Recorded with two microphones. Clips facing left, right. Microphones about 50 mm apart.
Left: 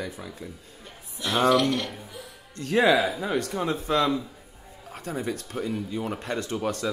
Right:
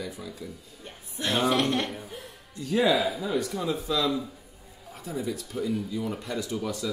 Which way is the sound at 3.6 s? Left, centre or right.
Left.